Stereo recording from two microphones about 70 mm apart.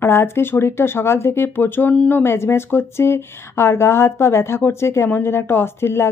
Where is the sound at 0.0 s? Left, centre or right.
Left.